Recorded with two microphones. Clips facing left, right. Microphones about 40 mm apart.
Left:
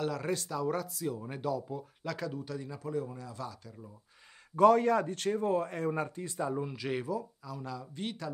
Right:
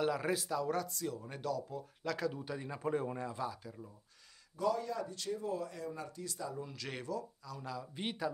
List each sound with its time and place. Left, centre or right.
0.0 s speech: centre
2.1 s speech: centre
2.4 s a man's voice: right
3.3 s speech: centre
4.6 s a man's voice: left
6.7 s speech: centre
7.9 s speech: centre